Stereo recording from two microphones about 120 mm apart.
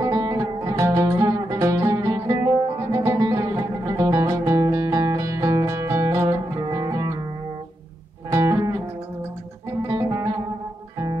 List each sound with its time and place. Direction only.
0.0 s music: 25° right (ahead or behind)
8.3 s music: 25° right (ahead or behind)